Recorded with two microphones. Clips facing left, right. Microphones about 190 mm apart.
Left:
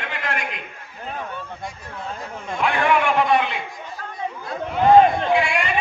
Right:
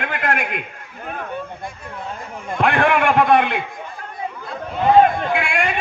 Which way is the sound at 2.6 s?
55° right (ahead or behind).